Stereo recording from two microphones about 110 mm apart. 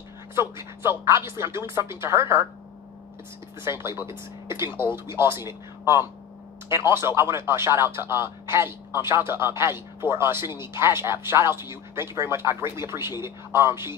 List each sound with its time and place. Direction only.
0.4 s speech: 25° right (ahead or behind)
3.6 s speech: 20° right (ahead or behind)